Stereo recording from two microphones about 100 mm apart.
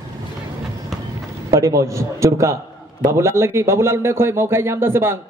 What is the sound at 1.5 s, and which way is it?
A man's voice, 35° right (ahead or behind).